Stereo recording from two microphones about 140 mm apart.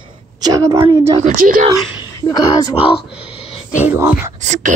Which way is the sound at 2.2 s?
30° left (ahead or behind).